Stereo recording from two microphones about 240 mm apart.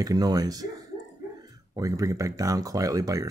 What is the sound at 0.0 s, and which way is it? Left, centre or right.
Speech, centre.